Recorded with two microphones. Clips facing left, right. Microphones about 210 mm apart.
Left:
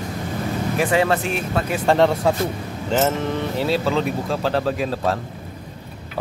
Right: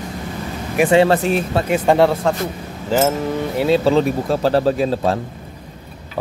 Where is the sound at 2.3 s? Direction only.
5° left (ahead or behind).